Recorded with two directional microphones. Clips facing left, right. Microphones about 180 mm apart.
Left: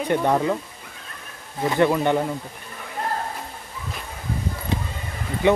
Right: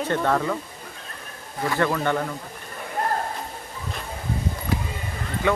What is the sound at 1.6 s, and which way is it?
Speech, 20° left (ahead or behind).